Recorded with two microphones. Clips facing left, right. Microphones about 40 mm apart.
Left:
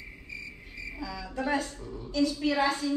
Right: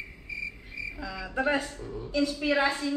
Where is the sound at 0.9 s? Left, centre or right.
Centre.